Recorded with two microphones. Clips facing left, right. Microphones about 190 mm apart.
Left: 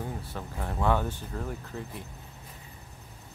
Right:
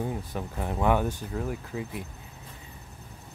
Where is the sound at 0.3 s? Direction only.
15° right (ahead or behind).